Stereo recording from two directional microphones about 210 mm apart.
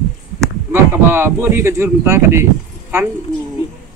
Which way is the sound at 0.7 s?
10° right (ahead or behind).